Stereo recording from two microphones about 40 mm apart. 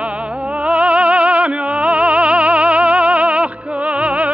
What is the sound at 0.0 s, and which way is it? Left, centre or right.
Music, right.